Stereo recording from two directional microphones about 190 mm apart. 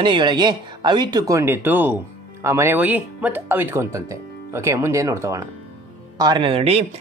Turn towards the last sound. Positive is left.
turn(degrees=-30)  # may be behind; listen again after turning